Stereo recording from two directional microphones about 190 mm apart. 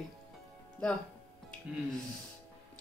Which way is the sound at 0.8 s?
5° left (ahead or behind).